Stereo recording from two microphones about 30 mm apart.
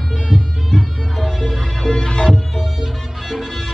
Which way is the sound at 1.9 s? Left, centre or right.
Left.